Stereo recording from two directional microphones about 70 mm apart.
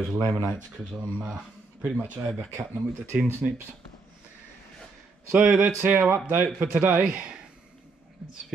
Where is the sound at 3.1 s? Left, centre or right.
Centre.